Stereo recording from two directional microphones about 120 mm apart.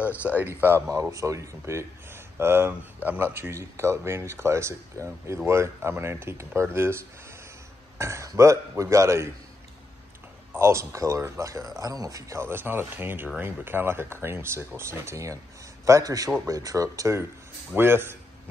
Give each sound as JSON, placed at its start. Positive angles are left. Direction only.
{"t": 0.3, "sound": "speech", "side_deg": -15}
{"t": 10.5, "sound": "a man's voice", "side_deg": -20}